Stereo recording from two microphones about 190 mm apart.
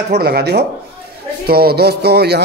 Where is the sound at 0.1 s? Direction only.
55° right (ahead or behind).